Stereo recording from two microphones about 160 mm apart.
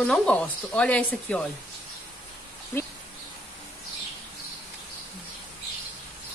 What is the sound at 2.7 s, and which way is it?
Speech, 15° left (ahead or behind).